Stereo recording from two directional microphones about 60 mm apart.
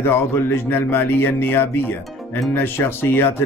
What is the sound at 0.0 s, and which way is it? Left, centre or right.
Speech, left.